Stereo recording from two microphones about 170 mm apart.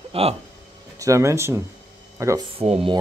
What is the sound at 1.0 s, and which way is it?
Speech, 20° right (ahead or behind).